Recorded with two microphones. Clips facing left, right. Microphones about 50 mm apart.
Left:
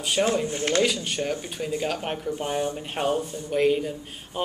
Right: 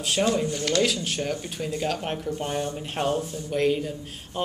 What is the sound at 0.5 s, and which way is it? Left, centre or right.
Speech, left.